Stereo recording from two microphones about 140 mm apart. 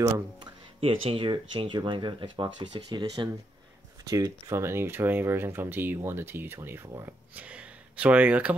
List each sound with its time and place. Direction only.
0.7 s speech: 40° right (ahead or behind); by 8.5 s 10° right (ahead or behind)